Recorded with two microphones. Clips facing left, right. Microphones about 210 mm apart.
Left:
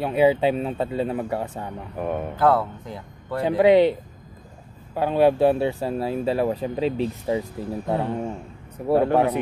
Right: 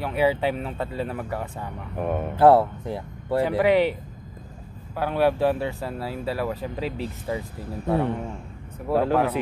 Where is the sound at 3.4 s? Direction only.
20° left (ahead or behind).